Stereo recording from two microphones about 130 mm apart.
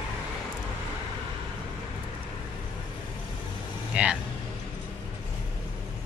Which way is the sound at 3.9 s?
10° right (ahead or behind).